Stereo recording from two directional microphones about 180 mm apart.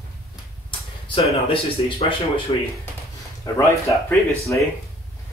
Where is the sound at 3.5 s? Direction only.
20° left (ahead or behind).